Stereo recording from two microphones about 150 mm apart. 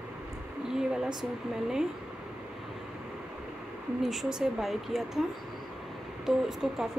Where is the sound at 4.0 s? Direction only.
Centre (ahead or behind).